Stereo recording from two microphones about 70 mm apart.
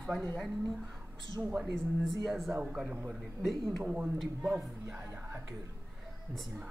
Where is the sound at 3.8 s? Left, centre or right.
Centre.